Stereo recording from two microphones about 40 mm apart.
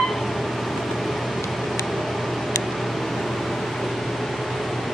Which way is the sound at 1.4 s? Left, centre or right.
Centre.